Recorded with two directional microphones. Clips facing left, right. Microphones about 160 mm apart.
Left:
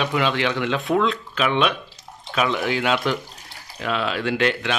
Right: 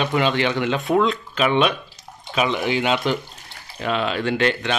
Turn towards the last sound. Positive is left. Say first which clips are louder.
# right 1 dB
turn(degrees=0)  # may be behind; listen again after turning